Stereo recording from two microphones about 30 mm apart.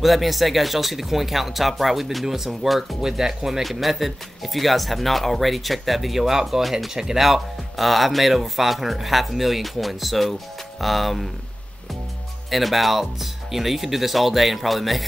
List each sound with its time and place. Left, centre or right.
0.0 s speech: centre
3.6 s speech: centre
7.2 s speech: centre
12.4 s speech: centre